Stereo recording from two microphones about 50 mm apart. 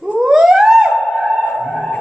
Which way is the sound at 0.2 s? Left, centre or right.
Centre.